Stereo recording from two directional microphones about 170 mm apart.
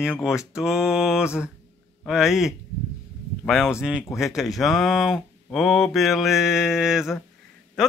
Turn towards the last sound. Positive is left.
turn(degrees=0)  # may be behind; listen again after turning